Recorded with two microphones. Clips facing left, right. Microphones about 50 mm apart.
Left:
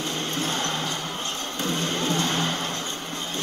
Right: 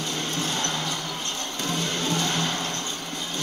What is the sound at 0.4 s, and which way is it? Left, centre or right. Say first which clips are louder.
Music: left 2 dB; left.